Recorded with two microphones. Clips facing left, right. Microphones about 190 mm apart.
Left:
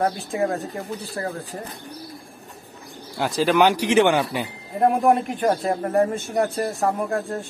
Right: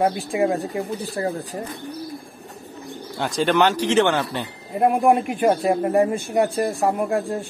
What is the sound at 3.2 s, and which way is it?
Speech, 5° left (ahead or behind).